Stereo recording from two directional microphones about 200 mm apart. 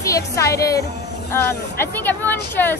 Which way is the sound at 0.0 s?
15° left (ahead or behind).